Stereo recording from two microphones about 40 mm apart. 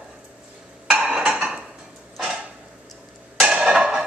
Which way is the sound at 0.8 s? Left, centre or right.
Right.